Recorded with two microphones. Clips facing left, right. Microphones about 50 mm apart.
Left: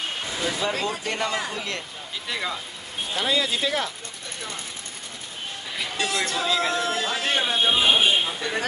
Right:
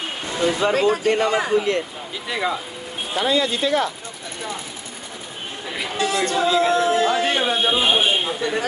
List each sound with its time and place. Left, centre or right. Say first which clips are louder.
0.7 s a woman's voice: right 9 dB; centre
3.2 s speech: right 4 dB; centre
5.7 s a woman's voice: right 5 dB; centre